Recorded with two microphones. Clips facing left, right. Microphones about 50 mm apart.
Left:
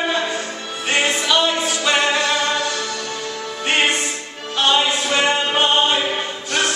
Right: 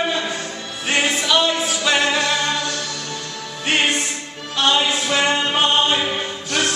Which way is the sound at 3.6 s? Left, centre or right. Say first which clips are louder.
Left 1 dB; centre.